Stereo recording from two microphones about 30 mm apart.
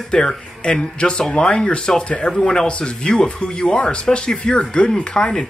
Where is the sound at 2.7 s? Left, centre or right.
Left.